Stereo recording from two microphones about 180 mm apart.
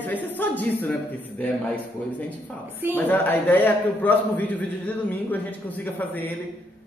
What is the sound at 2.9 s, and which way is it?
A man's voice, 10° left (ahead or behind).